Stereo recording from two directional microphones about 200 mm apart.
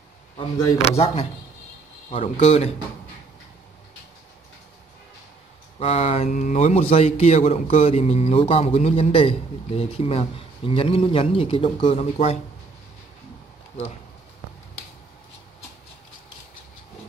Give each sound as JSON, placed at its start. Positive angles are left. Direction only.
{"t": 0.8, "sound": "a man's voice", "side_deg": 30}
{"t": 5.8, "sound": "a man's voice", "side_deg": 30}